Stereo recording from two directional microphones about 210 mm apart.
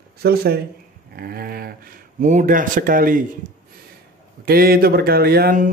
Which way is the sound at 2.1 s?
35° right (ahead or behind).